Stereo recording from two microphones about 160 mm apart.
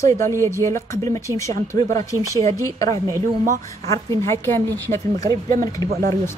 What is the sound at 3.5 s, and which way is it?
Speech, 20° left (ahead or behind).